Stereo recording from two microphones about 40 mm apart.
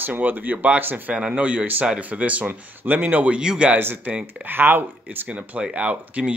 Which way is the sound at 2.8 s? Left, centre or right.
Right.